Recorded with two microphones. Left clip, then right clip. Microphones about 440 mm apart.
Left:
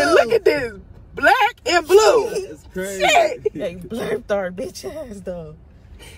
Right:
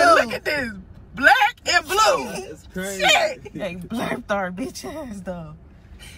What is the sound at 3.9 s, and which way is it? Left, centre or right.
Speech, centre.